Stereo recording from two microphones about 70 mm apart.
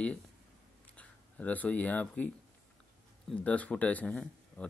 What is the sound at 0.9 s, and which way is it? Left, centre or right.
Speech, left.